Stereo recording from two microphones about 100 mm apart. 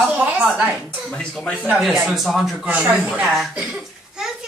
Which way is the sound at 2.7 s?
15° right (ahead or behind).